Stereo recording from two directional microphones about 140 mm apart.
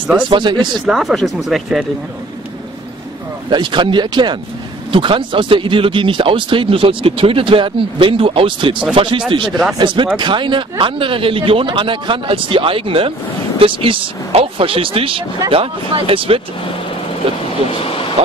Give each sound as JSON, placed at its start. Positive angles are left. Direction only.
{"t": 0.3, "sound": "speech", "side_deg": -35}
{"t": 0.8, "sound": "speech", "side_deg": 0}
{"t": 3.4, "sound": "speech", "side_deg": -35}
{"t": 9.5, "sound": "speech", "side_deg": -5}
{"t": 9.8, "sound": "speech", "side_deg": -35}